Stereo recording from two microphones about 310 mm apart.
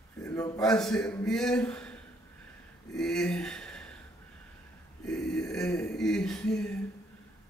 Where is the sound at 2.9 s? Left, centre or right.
Centre.